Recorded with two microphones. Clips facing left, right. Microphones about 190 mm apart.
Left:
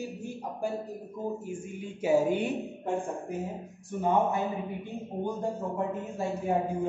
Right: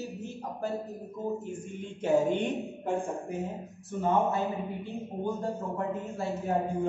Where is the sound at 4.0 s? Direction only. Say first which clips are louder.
Even; 15° left (ahead or behind).